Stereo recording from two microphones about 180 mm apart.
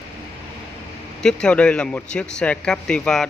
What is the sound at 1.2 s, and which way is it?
A man's voice, 5° left (ahead or behind).